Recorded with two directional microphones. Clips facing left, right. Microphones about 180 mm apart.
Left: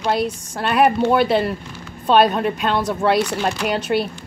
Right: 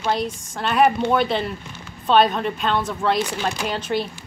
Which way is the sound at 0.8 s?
5° left (ahead or behind).